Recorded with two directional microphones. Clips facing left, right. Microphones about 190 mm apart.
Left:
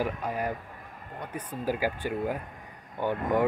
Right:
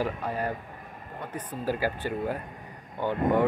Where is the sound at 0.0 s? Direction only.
10° left (ahead or behind).